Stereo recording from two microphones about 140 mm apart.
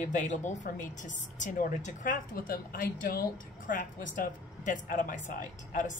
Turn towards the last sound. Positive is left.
turn(degrees=65)  # may be behind; listen again after turning